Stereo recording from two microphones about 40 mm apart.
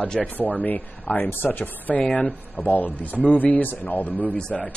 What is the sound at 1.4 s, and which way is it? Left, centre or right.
Speech, left.